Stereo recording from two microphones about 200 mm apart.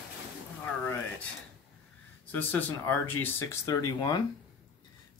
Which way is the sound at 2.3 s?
10° left (ahead or behind).